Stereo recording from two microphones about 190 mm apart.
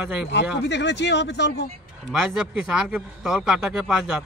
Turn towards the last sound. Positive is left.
turn(degrees=-5)  # may be behind; listen again after turning